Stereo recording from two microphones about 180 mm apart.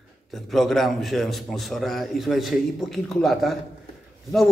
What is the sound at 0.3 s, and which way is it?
A man's voice, centre (ahead or behind).